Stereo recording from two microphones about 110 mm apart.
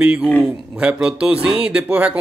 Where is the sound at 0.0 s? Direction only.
10° right (ahead or behind).